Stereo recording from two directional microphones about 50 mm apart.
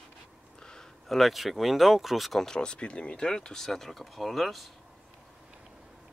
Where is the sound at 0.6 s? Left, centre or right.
Centre.